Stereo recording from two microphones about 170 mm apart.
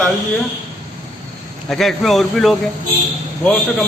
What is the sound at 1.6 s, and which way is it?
Speech, centre (ahead or behind).